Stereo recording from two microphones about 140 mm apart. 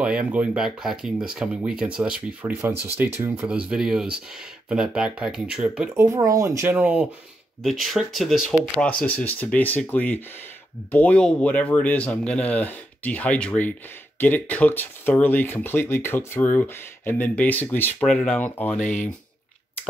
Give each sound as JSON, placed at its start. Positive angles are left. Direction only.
{"t": 0.0, "sound": "speech", "side_deg": -10}
{"t": 6.0, "sound": "speech", "side_deg": -25}
{"t": 7.6, "sound": "speech", "side_deg": 0}
{"t": 8.5, "sound": "speech", "side_deg": 10}
{"t": 18.0, "sound": "speech", "side_deg": 5}
{"t": 18.8, "sound": "speech", "side_deg": 60}